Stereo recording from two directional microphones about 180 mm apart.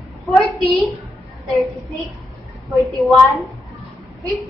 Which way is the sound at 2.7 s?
Centre (ahead or behind).